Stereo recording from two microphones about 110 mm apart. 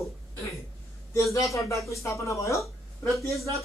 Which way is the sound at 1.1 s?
30° left (ahead or behind).